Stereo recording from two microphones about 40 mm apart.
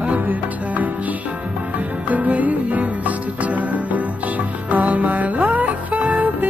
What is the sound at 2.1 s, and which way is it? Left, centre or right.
Music, right.